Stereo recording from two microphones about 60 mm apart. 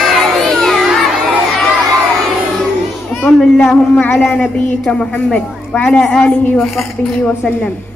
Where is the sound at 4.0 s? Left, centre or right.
Left.